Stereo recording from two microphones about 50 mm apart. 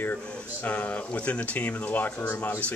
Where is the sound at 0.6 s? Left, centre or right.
Left.